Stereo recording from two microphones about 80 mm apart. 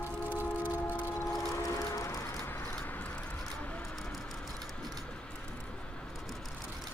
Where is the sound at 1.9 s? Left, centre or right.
Left.